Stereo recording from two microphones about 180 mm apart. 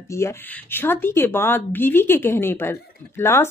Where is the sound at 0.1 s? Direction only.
15° left (ahead or behind).